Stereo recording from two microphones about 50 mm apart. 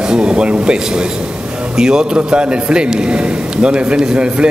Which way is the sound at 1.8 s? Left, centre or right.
Centre.